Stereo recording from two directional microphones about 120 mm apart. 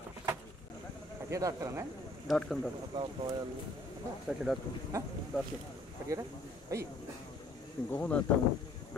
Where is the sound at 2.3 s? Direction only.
5° left (ahead or behind).